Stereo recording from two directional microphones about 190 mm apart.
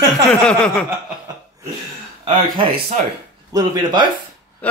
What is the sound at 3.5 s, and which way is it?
Speech, 20° right (ahead or behind).